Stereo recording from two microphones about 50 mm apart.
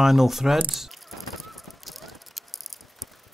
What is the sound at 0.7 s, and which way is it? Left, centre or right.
Honk, centre.